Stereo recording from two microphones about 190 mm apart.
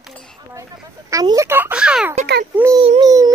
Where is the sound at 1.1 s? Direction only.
20° right (ahead or behind).